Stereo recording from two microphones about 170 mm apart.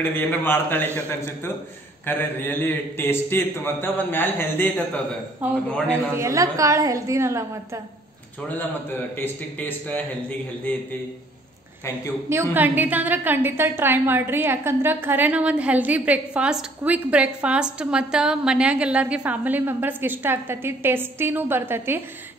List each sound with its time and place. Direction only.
0.0 s a man's voice: 10° left (ahead or behind)
6.1 s a woman's voice: 20° right (ahead or behind)
9.1 s a man's voice: 10° left (ahead or behind)
12.3 s a woman's voice: 10° right (ahead or behind)